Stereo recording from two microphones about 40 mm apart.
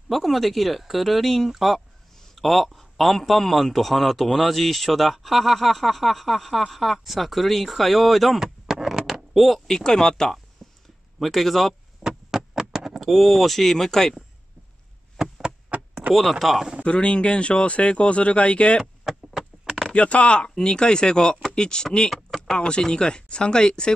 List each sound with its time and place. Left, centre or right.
0.1 s a man's voice: centre
8.4 s a sound: centre
9.3 s speech: centre
9.7 s a man's voice: centre
12.0 s a sound: centre
13.0 s a man's voice: centre
15.2 s chop: centre
15.7 s door: right
16.2 s a man's voice: centre
16.8 s speech: left
19.9 s speech: left